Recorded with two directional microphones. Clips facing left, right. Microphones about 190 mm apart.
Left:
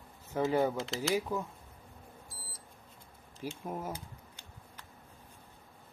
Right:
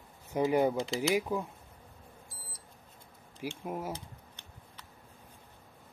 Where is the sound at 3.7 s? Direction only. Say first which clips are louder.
Right 2 dB; 10° right (ahead or behind).